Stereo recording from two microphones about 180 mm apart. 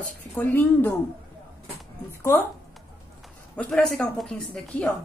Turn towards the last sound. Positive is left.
turn(degrees=5)  # may be behind; listen again after turning